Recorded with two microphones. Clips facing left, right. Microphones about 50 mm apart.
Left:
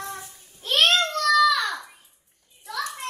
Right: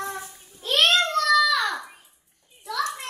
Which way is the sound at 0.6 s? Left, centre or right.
Centre.